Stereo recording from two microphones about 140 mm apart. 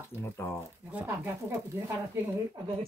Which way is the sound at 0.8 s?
10° right (ahead or behind).